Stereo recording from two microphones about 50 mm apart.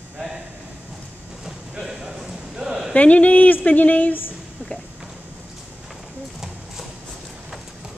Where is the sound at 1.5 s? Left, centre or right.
Centre.